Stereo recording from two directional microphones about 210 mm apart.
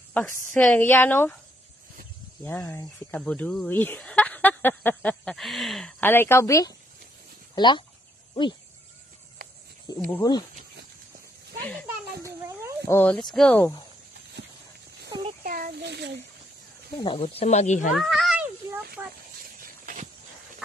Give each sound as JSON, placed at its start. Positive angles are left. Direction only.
{"t": 0.1, "sound": "speech", "side_deg": 10}
{"t": 2.4, "sound": "speech", "side_deg": 10}
{"t": 10.1, "sound": "speech", "side_deg": 20}
{"t": 12.2, "sound": "a sound", "side_deg": -15}
{"t": 12.8, "sound": "speech", "side_deg": 10}
{"t": 15.0, "sound": "a sound", "side_deg": -20}
{"t": 15.4, "sound": "a child's voice", "side_deg": -40}
{"t": 17.0, "sound": "speech", "side_deg": 25}
{"t": 17.9, "sound": "speech", "side_deg": 0}